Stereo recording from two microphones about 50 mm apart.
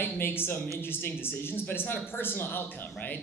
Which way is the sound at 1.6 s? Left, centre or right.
Left.